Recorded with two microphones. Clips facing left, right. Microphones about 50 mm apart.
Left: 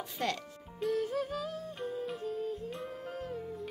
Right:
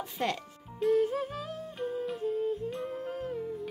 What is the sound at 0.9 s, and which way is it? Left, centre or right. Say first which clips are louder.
Music: right 5 dB; right.